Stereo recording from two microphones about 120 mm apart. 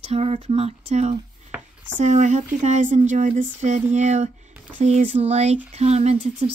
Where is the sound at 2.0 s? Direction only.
75° right (ahead or behind).